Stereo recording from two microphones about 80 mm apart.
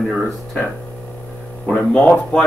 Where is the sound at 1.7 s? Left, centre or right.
Centre.